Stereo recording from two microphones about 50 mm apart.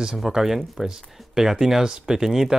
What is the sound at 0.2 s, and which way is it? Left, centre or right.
Speech, centre.